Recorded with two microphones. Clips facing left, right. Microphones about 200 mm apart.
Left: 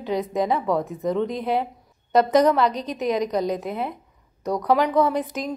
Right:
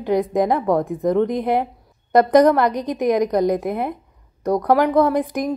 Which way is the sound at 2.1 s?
55° right (ahead or behind).